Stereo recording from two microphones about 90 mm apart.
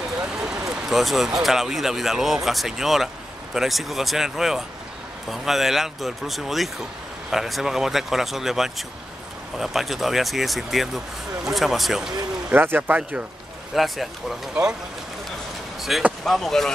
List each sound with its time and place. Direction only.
0.2 s speech: 10° right (ahead or behind)
12.5 s speech: 20° right (ahead or behind)
13.7 s speech: centre (ahead or behind)
15.9 s speech: 5° right (ahead or behind)